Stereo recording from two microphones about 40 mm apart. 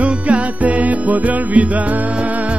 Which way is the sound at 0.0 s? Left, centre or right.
Right.